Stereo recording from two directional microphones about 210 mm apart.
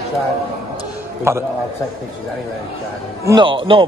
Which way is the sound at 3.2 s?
20° right (ahead or behind).